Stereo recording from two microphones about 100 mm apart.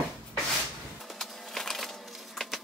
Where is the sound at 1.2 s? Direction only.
Centre (ahead or behind).